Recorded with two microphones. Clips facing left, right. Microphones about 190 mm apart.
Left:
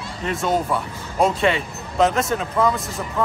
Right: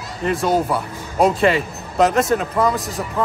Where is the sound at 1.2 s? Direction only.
Centre (ahead or behind).